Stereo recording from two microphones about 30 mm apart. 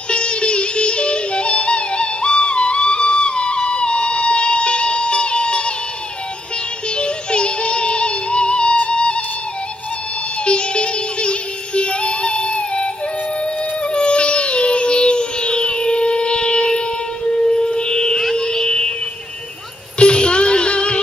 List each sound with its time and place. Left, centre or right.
0.1 s music: left
7.0 s music: left
10.4 s music: left
20.0 s music: left